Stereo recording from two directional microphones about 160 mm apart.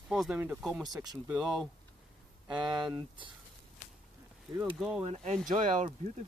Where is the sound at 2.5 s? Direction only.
30° right (ahead or behind).